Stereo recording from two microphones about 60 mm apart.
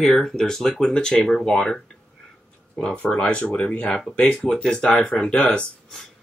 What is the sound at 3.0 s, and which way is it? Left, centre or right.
Speech, centre.